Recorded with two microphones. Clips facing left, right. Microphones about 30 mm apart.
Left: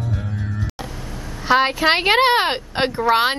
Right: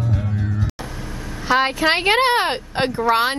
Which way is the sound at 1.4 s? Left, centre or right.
Centre.